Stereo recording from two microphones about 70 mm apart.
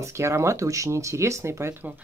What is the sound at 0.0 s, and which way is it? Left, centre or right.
Speech, right.